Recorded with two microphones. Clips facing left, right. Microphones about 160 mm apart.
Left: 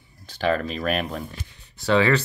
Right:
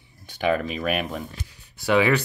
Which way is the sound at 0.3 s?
15° right (ahead or behind).